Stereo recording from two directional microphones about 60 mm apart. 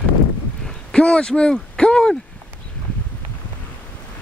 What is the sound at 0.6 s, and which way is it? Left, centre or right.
A man's voice, centre.